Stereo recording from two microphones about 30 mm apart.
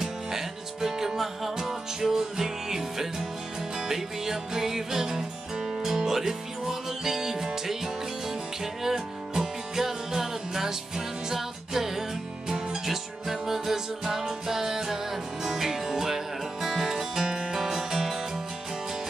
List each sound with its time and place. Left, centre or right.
0.0 s music: centre
17.6 s music: centre